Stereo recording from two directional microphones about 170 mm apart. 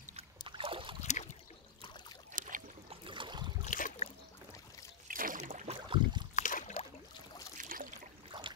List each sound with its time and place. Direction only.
0.1 s boat: 30° right (ahead or behind)
2.3 s boat: 50° right (ahead or behind)
2.9 s a sound: 30° right (ahead or behind)
3.6 s boat: 45° left (ahead or behind)
5.0 s boat: 50° right (ahead or behind); by 6.2 s 35° right (ahead or behind)
6.3 s boat: 45° left (ahead or behind)
7.5 s water: 55° right (ahead or behind)
8.3 s a sound: 30° right (ahead or behind)